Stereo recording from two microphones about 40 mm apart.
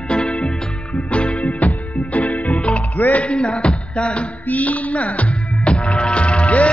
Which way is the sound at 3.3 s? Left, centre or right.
Left.